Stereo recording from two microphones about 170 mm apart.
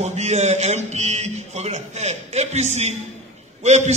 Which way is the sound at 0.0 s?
40° right (ahead or behind).